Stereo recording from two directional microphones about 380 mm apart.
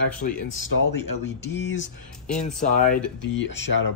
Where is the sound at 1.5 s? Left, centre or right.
Left.